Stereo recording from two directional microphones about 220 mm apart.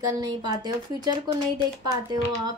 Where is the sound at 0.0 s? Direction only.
20° right (ahead or behind).